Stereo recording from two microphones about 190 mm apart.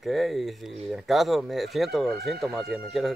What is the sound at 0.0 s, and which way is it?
Speech, centre (ahead or behind).